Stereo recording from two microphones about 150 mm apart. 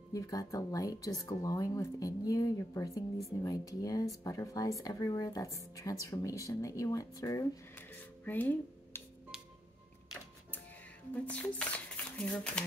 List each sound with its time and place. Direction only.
0.1 s speech: 25° left (ahead or behind)
7.9 s music: 10° left (ahead or behind)
11.2 s speech: 10° left (ahead or behind)